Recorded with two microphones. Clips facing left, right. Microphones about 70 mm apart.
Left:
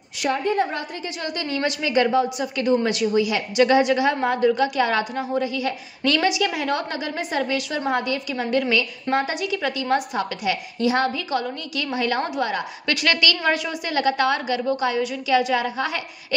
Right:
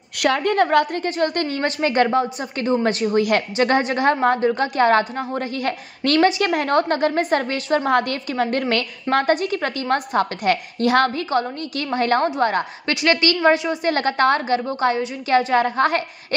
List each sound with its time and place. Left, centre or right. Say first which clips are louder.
0.2 s a woman's voice: right 4 dB; right
1.0 s a woman's voice: right 7 dB; right
3.5 s a woman's voice: left 6 dB; right
11.1 s a woman's voice: right 4 dB; right
12.8 s a woman's voice: right 2 dB; right
13.8 s a woman's voice: right 2 dB; right